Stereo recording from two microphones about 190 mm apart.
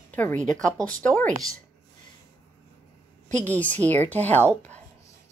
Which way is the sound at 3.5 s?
10° left (ahead or behind).